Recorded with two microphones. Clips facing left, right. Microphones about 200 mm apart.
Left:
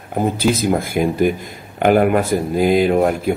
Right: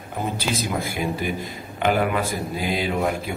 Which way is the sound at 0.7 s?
50° left (ahead or behind).